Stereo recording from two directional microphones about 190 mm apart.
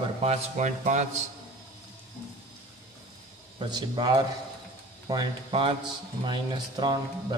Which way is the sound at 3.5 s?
25° right (ahead or behind).